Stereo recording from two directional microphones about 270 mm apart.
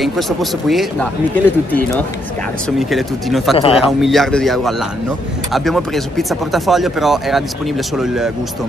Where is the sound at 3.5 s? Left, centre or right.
Left.